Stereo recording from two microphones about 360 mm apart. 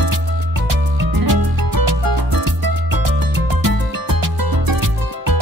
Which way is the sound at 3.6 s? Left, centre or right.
Right.